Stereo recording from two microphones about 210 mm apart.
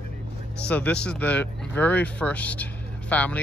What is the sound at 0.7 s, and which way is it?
Speech, 5° left (ahead or behind).